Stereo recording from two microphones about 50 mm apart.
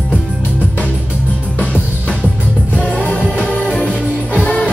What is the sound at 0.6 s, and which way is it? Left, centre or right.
Music, left.